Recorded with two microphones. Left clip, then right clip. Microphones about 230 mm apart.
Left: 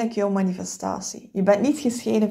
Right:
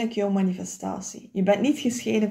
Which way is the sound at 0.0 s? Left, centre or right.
Centre.